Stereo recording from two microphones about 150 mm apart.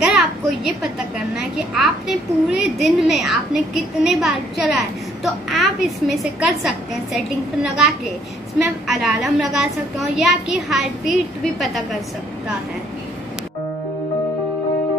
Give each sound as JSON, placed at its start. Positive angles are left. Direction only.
{"t": 0.0, "sound": "a child's voice", "side_deg": 0}